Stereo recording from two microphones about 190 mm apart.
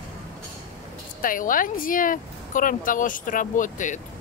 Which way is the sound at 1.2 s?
45° left (ahead or behind).